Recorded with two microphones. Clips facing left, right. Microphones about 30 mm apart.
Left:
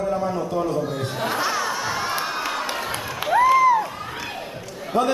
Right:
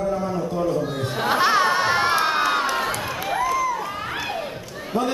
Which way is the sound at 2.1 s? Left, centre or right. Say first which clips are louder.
Right 6 dB; right.